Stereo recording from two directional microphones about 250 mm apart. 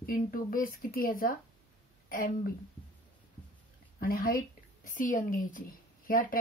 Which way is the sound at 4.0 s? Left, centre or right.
Left.